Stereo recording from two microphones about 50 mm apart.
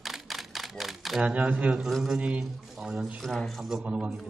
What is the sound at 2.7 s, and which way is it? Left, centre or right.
Speech, centre.